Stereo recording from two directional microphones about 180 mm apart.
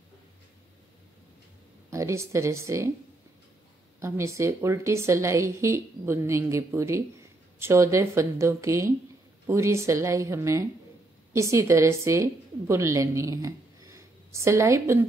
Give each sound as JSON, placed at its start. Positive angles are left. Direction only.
{"t": 1.9, "sound": "speech", "side_deg": -15}
{"t": 4.0, "sound": "a woman's voice", "side_deg": -15}